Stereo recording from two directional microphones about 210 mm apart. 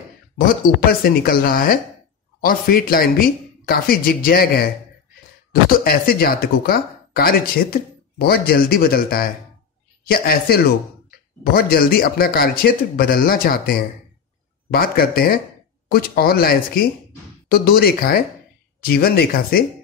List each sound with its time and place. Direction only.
1.0 s speech: 45° left (ahead or behind)